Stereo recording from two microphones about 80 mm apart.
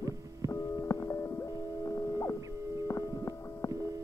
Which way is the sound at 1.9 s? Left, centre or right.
Left.